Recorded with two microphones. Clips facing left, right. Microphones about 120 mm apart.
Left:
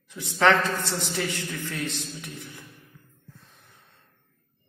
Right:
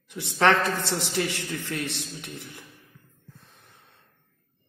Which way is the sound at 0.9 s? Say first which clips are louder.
Right 2 dB; 20° right (ahead or behind).